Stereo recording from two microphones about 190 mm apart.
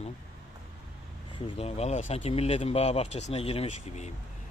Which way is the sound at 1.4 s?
35° left (ahead or behind).